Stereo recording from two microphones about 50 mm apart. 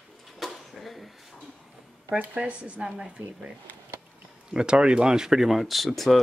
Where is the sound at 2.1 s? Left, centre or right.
Right.